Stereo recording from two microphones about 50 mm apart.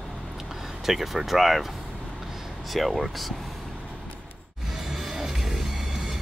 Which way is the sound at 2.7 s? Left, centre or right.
Centre.